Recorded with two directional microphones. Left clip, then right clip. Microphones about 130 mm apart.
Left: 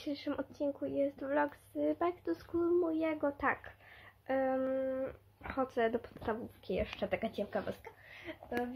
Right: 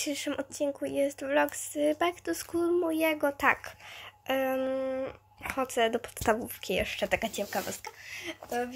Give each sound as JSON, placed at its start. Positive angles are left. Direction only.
{"t": 0.0, "sound": "speech", "side_deg": -20}
{"t": 2.5, "sound": "speech", "side_deg": -30}
{"t": 5.6, "sound": "speech", "side_deg": -10}
{"t": 6.6, "sound": "speech", "side_deg": -30}